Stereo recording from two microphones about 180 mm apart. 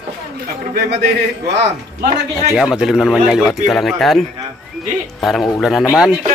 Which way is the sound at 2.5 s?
Centre (ahead or behind).